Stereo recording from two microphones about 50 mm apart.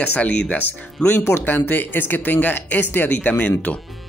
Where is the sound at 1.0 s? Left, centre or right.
Centre.